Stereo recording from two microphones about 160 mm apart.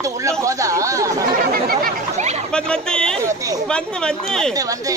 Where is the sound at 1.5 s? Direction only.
65° right (ahead or behind).